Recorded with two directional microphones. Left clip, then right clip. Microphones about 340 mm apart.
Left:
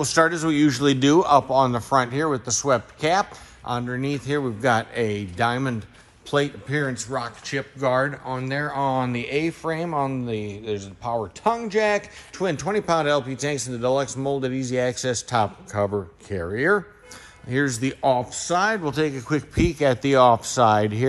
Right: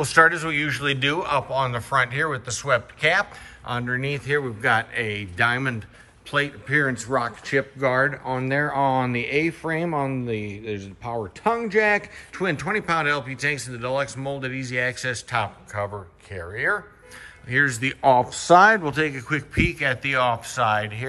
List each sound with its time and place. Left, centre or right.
0.0 s a man's voice: centre
17.5 s a man's voice: centre